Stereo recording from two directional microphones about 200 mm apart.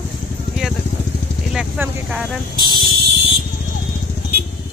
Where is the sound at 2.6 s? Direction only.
20° right (ahead or behind).